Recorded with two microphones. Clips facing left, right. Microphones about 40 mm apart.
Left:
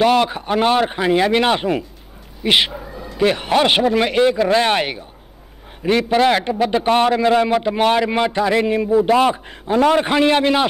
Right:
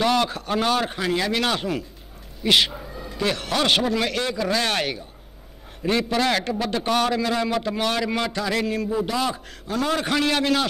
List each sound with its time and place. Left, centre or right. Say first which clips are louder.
0.0 s a man's voice: left 6 dB; left